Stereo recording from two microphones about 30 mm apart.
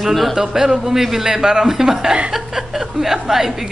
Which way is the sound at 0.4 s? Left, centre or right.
Centre.